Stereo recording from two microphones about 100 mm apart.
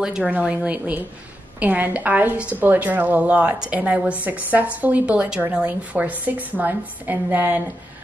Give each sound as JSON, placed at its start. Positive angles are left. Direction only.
{"t": 0.0, "sound": "a woman's voice", "side_deg": -10}